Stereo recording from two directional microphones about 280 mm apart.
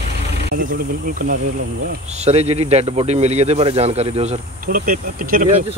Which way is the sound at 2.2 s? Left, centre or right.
Right.